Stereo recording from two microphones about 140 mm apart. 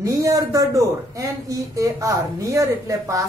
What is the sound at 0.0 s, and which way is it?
A man's voice, 25° right (ahead or behind).